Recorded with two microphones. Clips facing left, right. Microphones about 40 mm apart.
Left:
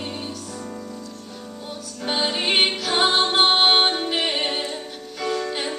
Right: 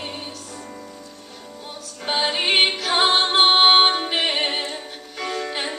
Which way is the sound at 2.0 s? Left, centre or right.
Centre.